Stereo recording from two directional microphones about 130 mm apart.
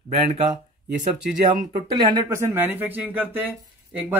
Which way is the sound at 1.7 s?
35° right (ahead or behind).